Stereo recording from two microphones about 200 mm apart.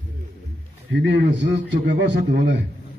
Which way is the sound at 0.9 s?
60° right (ahead or behind).